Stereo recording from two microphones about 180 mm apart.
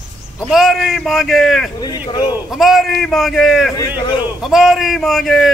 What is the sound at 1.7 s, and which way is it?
Speech, 20° left (ahead or behind).